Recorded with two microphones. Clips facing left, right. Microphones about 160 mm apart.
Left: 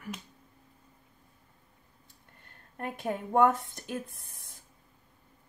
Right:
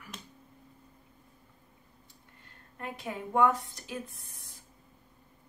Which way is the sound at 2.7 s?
55° left (ahead or behind).